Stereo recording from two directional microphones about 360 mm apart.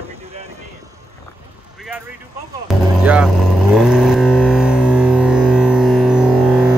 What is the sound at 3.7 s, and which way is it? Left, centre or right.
Vehicle, centre.